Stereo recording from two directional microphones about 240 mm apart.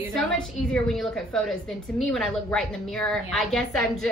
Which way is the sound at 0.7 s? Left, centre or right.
Centre.